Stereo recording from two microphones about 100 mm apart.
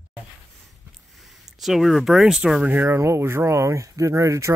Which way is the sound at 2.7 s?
20° right (ahead or behind).